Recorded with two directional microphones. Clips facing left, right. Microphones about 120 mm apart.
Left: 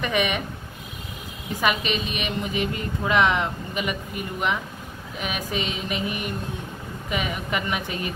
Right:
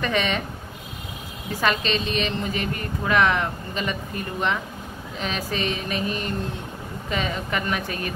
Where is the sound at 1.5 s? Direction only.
15° left (ahead or behind).